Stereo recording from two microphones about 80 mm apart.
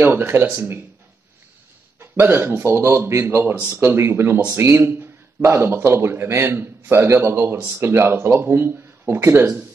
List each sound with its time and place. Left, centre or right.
0.0 s speech: right
2.0 s a man's voice: right
3.5 s speech: centre
3.8 s speech: right